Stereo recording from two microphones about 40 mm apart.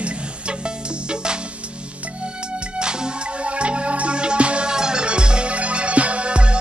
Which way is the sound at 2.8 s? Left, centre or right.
Right.